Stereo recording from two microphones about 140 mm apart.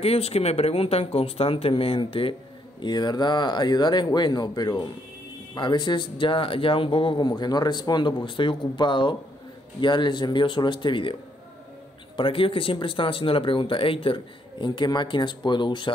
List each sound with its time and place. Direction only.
0.0 s speech: 45° left (ahead or behind)
12.2 s speech: 40° left (ahead or behind)